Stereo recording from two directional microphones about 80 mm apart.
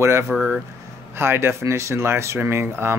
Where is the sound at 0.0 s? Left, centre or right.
Right.